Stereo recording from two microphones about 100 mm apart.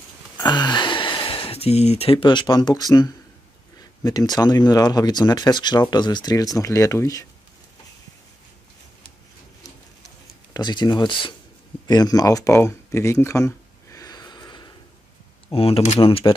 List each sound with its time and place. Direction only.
0.4 s a sound: 45° left (ahead or behind)
4.0 s speech: 40° left (ahead or behind)
10.5 s speech: 45° left (ahead or behind)
11.9 s speech: 40° left (ahead or behind)
12.5 s a sound: 25° left (ahead or behind); by 14.7 s 45° left (ahead or behind)
15.5 s speech: 70° left (ahead or behind)